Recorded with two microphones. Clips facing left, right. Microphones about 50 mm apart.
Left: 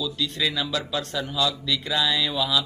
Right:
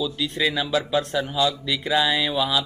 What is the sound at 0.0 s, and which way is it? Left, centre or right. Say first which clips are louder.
Speech: right 3 dB; centre.